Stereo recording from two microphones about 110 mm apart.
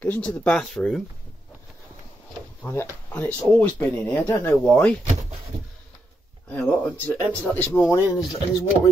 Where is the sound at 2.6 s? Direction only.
25° left (ahead or behind).